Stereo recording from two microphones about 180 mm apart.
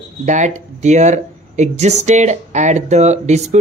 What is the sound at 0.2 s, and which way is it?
Speech, 40° right (ahead or behind).